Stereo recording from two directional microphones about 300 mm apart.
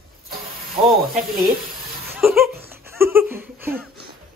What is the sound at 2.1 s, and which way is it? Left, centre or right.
Laughter, centre.